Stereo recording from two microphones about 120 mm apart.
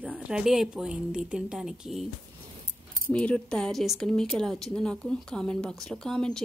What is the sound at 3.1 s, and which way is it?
A woman's voice, 10° left (ahead or behind).